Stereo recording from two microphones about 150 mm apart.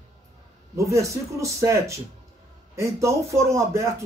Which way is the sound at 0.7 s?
20° right (ahead or behind).